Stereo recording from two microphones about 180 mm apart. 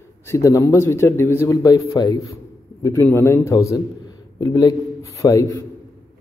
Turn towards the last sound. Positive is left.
turn(degrees=20)  # may be behind; listen again after turning